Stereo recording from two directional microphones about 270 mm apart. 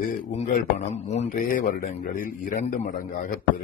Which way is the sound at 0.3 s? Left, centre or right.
Left.